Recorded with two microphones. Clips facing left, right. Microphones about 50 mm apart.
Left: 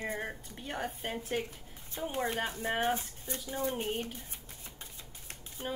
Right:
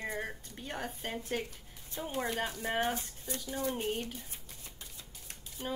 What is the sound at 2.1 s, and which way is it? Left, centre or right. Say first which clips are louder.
Speech: left 1 dB; left.